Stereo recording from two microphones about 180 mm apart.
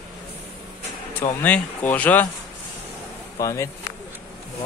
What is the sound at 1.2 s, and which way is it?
Speech, 10° left (ahead or behind).